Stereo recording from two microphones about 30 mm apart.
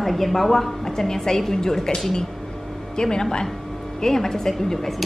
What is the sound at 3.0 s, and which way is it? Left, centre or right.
A woman's voice, left.